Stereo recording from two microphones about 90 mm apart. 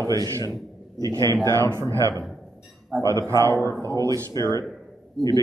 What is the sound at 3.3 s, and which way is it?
Speech, 35° right (ahead or behind).